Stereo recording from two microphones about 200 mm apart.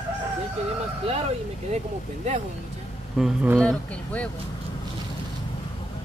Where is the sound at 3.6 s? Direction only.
5° left (ahead or behind).